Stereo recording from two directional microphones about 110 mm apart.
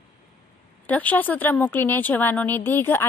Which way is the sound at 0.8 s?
15° left (ahead or behind).